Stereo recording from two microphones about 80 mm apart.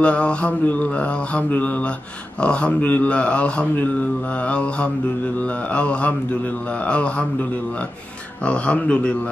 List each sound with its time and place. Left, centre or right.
0.0 s speech: centre
5.8 s speech: centre
8.5 s speech: centre